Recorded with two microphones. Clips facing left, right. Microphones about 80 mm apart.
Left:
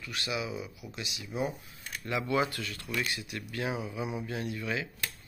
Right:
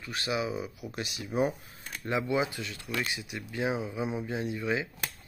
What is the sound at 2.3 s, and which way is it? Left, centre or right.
Speech, centre.